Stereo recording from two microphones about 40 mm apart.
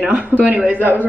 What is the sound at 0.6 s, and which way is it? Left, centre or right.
Speech, right.